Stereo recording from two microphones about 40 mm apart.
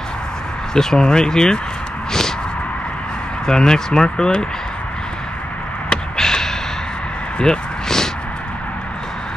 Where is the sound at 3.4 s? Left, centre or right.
Centre.